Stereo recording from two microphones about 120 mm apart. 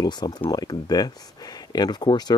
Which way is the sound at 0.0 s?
35° left (ahead or behind).